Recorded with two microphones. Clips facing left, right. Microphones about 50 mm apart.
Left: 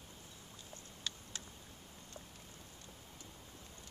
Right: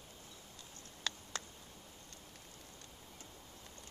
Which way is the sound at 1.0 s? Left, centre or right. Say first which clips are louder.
Right 5 dB; right.